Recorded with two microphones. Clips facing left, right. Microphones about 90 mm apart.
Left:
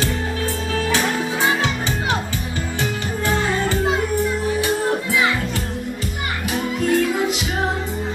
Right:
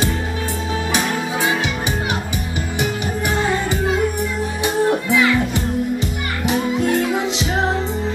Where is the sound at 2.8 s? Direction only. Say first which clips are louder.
Right 3 dB; 15° right (ahead or behind).